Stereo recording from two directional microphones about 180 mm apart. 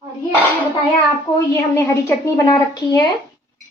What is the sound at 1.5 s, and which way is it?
Speech, 15° left (ahead or behind).